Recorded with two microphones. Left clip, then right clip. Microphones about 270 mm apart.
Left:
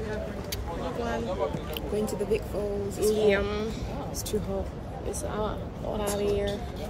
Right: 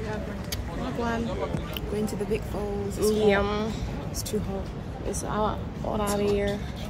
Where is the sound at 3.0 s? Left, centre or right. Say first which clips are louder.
Right 1 dB; centre.